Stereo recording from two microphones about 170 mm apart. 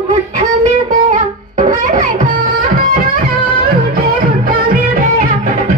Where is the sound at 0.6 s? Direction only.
45° right (ahead or behind).